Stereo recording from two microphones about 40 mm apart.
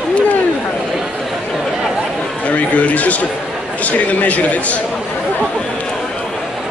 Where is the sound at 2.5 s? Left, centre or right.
Left.